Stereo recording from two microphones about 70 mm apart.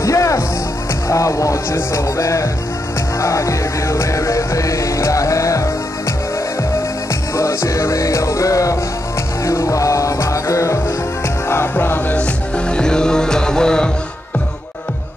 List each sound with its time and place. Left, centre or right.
0.0 s music: left
7.3 s music: left
11.4 s music: left
12.2 s music: centre